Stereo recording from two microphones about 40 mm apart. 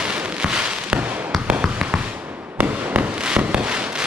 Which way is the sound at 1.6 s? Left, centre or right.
Right.